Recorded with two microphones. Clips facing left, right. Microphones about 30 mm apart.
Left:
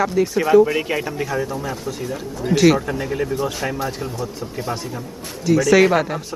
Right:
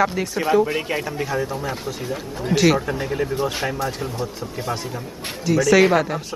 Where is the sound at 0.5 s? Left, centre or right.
Centre.